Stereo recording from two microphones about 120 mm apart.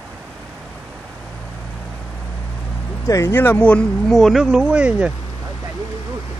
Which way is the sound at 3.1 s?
20° left (ahead or behind).